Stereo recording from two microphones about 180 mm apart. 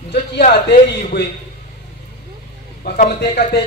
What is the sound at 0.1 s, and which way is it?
Speech, 65° left (ahead or behind).